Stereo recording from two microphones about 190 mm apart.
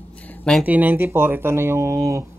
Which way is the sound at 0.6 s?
10° right (ahead or behind).